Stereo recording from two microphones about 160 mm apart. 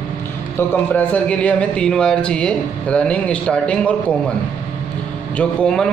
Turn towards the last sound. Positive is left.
turn(degrees=5)  # may be behind; listen again after turning